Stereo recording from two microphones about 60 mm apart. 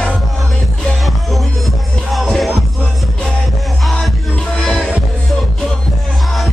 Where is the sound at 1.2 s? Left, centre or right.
Centre.